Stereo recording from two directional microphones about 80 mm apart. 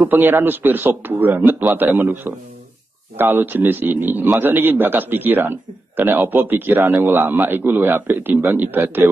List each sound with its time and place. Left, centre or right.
0.1 s a man's voice: right